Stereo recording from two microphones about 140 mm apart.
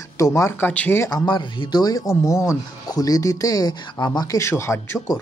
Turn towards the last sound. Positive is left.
turn(degrees=20)  # may be behind; listen again after turning